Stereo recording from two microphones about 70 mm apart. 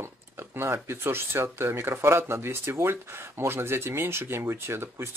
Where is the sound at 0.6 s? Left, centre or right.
Right.